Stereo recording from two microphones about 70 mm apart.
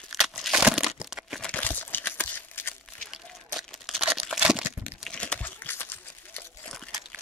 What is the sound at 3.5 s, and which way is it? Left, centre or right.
Crumpling, centre.